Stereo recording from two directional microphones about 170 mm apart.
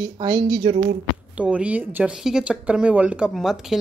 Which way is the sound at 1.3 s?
5° right (ahead or behind).